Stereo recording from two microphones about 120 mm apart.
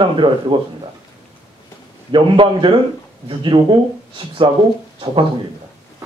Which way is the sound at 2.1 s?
45° right (ahead or behind).